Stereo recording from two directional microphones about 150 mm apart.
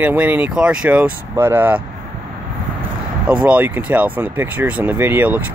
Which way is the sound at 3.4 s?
10° right (ahead or behind).